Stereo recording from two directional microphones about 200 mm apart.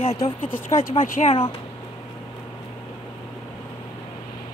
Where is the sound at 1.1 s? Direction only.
35° left (ahead or behind).